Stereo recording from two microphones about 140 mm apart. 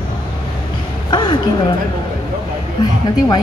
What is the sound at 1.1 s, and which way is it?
Speech, 30° left (ahead or behind).